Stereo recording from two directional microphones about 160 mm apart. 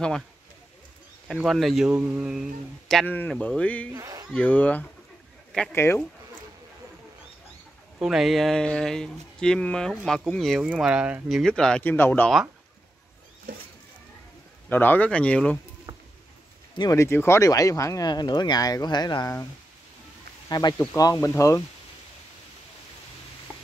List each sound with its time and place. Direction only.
1.2 s speech: 5° right (ahead or behind)
3.9 s speech: 20° right (ahead or behind)
4.3 s speech: 10° left (ahead or behind)
8.0 s speech: centre (ahead or behind)
14.7 s speech: 10° left (ahead or behind)
16.7 s speech: 20° left (ahead or behind)
20.4 s speech: 25° left (ahead or behind)